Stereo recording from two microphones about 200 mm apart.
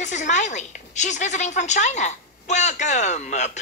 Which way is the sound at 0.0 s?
35° left (ahead or behind).